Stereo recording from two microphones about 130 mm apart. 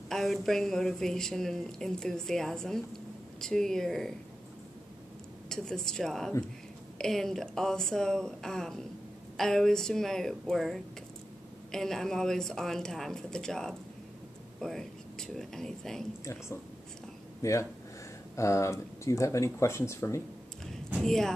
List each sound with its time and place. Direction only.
0.1 s a woman's voice: centre (ahead or behind)
5.5 s a woman's voice: 5° left (ahead or behind)
17.4 s speech: 25° left (ahead or behind)
21.0 s speech: 5° left (ahead or behind)